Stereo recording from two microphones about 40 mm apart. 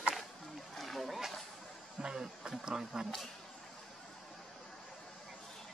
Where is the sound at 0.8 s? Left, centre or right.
Centre.